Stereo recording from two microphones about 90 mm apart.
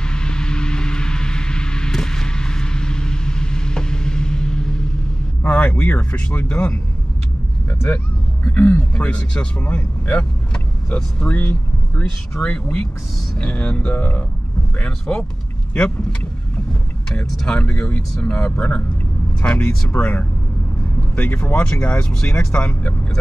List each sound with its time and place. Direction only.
0.0 s a sound: 10° left (ahead or behind)
5.4 s a man's voice: 15° left (ahead or behind)
8.5 s speech: 20° left (ahead or behind)
15.7 s speech: 10° left (ahead or behind)